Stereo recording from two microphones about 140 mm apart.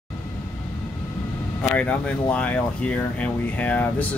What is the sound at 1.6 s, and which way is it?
Speech, 10° left (ahead or behind).